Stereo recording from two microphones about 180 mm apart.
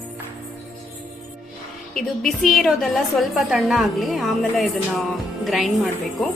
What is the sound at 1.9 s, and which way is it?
A woman's voice, centre (ahead or behind).